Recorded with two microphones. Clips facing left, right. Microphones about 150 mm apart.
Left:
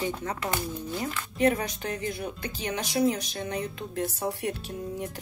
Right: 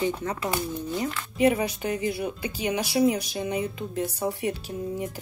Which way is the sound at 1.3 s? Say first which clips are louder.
Right 3 dB; 10° right (ahead or behind).